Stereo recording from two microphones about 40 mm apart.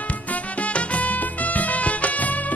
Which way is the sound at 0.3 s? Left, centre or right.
Left.